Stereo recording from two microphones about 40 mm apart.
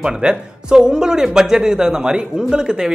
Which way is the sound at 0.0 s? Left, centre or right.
Right.